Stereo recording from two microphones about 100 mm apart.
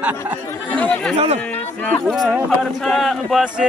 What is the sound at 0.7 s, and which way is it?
Chatter, 15° left (ahead or behind).